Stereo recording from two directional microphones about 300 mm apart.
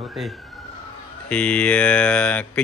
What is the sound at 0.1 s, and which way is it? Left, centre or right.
A man's voice, centre.